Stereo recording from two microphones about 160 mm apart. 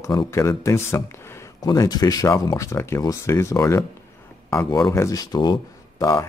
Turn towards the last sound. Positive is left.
turn(degrees=20)  # may be behind; listen again after turning